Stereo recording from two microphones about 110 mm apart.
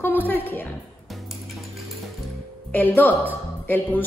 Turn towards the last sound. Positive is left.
turn(degrees=15)  # may be behind; listen again after turning